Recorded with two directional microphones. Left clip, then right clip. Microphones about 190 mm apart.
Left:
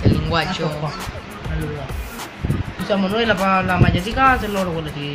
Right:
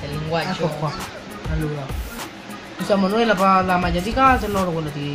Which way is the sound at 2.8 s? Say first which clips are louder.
Right 1 dB; 30° right (ahead or behind).